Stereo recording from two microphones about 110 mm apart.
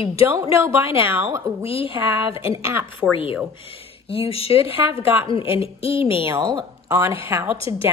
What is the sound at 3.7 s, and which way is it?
Speech, 60° left (ahead or behind).